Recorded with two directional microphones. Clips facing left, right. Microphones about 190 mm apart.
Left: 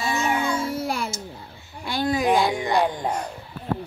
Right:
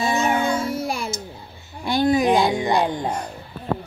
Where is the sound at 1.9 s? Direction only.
20° right (ahead or behind).